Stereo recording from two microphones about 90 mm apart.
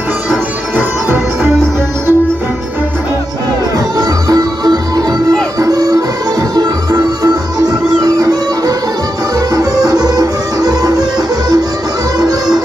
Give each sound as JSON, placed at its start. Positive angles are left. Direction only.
{"t": 0.7, "sound": "music", "side_deg": -20}
{"t": 3.7, "sound": "music", "side_deg": -45}